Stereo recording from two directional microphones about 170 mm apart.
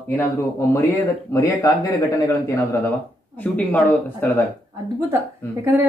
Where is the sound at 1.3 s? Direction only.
20° left (ahead or behind).